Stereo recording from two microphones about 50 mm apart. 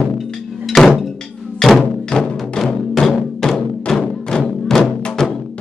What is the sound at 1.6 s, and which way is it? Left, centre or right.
Music, centre.